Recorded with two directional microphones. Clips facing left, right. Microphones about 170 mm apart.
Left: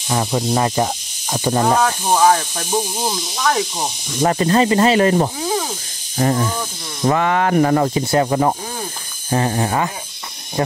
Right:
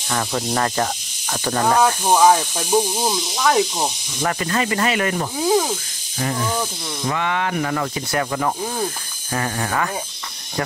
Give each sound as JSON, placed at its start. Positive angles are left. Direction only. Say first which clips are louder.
{"t": 0.1, "sound": "speech", "louder": "left 4 dB", "side_deg": 20}
{"t": 1.8, "sound": "speech", "louder": "even", "side_deg": -10}
{"t": 4.2, "sound": "speech", "louder": "left 7 dB", "side_deg": 30}